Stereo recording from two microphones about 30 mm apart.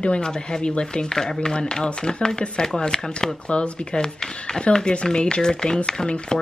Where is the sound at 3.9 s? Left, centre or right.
Left.